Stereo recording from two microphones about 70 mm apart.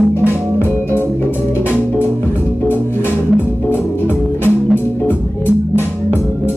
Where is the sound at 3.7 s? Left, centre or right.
Left.